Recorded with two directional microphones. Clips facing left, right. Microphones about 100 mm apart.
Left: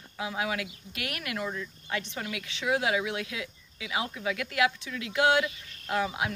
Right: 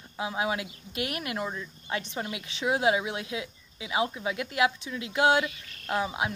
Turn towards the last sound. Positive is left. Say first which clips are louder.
# even
turn(degrees=-25)  # may be behind; listen again after turning